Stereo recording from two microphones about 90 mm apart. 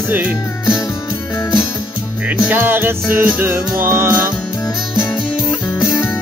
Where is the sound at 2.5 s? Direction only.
20° right (ahead or behind).